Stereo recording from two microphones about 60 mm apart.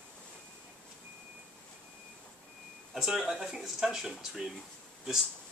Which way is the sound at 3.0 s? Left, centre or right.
Centre.